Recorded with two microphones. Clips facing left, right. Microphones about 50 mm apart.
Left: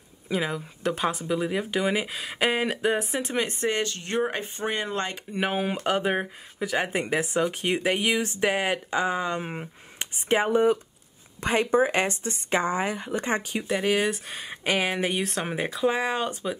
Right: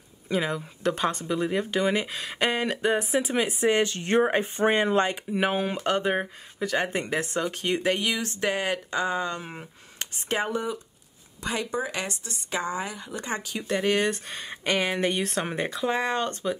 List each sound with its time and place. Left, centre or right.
0.3 s speech: centre
3.8 s speech: right
5.3 s speech: centre
11.4 s speech: left
13.7 s speech: centre